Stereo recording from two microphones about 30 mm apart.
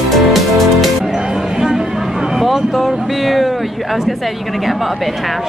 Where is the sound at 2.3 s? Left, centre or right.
Centre.